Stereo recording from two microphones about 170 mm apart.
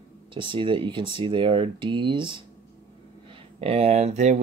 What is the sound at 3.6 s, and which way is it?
Speech, 35° right (ahead or behind).